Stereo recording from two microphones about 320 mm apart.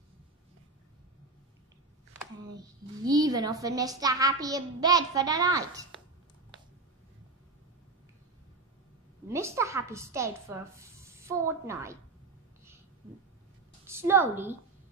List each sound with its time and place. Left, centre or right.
3.1 s a child's voice: centre
9.3 s a child's voice: centre
13.8 s a child's voice: centre